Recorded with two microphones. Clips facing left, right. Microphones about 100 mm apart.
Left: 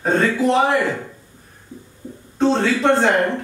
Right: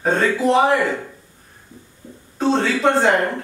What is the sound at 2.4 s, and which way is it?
Speech, centre (ahead or behind).